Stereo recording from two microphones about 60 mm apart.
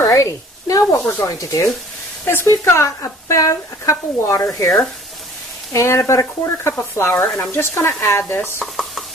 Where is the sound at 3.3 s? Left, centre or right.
Left.